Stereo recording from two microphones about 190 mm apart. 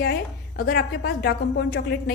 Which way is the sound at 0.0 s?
55° left (ahead or behind).